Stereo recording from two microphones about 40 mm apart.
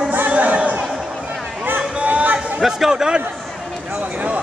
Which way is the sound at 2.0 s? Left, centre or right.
Right.